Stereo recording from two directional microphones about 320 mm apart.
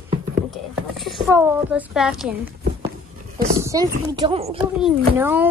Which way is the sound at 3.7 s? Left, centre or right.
Centre.